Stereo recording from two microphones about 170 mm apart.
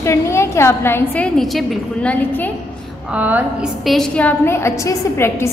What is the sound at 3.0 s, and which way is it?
A woman's voice, 10° right (ahead or behind).